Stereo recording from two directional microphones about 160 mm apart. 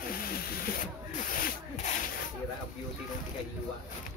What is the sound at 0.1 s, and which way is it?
Spray, 65° left (ahead or behind).